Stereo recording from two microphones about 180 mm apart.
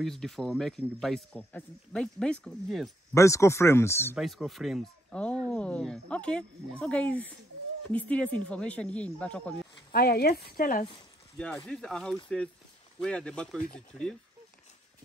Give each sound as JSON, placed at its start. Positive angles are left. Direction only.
{"t": 0.0, "sound": "speech", "side_deg": 0}
{"t": 3.2, "sound": "speech", "side_deg": 15}
{"t": 4.1, "sound": "speech", "side_deg": 0}
{"t": 9.8, "sound": "speech", "side_deg": 60}
{"t": 11.3, "sound": "speech", "side_deg": 10}